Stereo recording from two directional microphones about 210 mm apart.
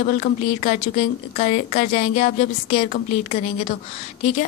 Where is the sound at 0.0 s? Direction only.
35° left (ahead or behind).